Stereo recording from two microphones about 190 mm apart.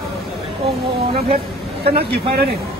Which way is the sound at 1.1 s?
30° right (ahead or behind).